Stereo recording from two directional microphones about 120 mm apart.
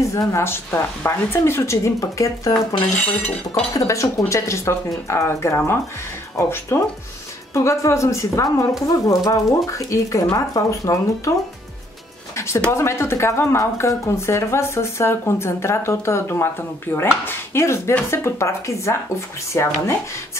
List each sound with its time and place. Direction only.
0.1 s speech: 25° left (ahead or behind)
2.5 s speech: 10° left (ahead or behind)
3.7 s speech: 25° left (ahead or behind)
12.4 s a sound: 25° left (ahead or behind)
12.7 s speech: 25° left (ahead or behind)